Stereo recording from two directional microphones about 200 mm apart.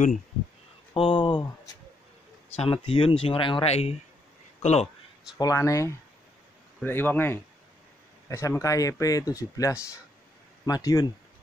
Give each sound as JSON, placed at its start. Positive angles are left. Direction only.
{"t": 0.9, "sound": "speech", "side_deg": 25}
{"t": 2.5, "sound": "speech", "side_deg": 30}
{"t": 5.4, "sound": "speech", "side_deg": 15}